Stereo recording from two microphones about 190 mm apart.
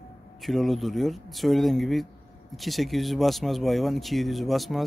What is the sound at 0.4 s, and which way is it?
Speech, centre (ahead or behind).